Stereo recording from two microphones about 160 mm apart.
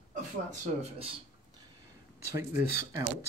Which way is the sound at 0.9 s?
35° right (ahead or behind).